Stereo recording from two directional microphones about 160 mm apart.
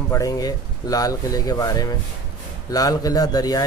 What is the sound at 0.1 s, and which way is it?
Speech, 20° left (ahead or behind).